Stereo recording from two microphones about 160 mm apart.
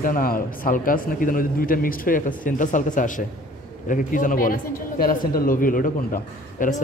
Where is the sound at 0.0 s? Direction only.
60° left (ahead or behind).